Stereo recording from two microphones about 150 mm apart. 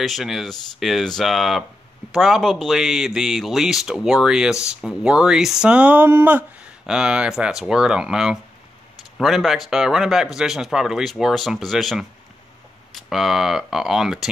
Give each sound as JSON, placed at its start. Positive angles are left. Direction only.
{"t": 0.0, "sound": "speech", "side_deg": 0}